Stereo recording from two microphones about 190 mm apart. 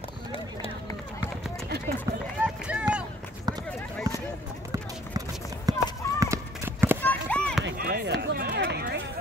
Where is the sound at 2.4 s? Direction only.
5° right (ahead or behind).